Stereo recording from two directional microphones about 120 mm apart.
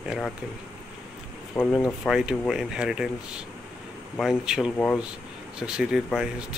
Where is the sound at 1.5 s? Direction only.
10° left (ahead or behind).